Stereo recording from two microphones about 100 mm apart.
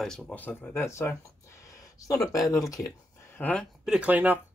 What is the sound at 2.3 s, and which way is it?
Speech, 35° left (ahead or behind).